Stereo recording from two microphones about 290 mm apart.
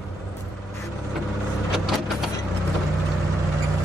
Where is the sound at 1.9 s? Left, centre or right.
Centre.